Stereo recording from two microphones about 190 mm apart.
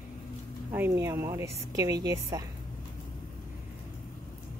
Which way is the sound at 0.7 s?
10° right (ahead or behind).